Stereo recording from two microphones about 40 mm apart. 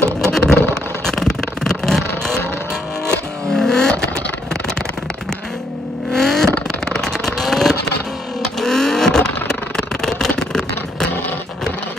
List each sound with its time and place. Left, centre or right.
0.2 s vehicle: centre
3.5 s vehicle: centre
6.1 s vehicle: centre